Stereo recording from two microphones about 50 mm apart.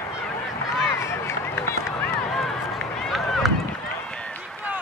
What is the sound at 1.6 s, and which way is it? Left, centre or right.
Run, left.